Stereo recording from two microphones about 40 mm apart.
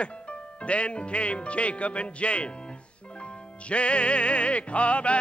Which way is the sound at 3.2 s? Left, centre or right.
Left.